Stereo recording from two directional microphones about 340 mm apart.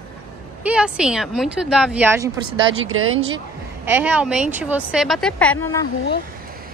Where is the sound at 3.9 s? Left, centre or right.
Centre.